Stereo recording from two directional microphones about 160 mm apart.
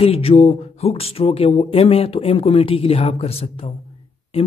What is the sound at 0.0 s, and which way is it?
Speech, 40° left (ahead or behind).